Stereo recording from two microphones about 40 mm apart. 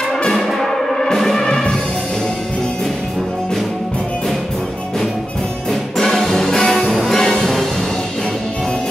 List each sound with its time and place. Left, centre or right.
0.5 s music: centre
1.5 s music: left
5.7 s music: centre